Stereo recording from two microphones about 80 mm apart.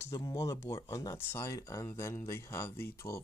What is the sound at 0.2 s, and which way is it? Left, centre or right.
Speech, left.